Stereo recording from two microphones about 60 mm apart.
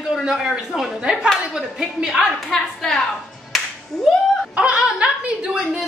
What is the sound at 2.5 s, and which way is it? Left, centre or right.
Speech, centre.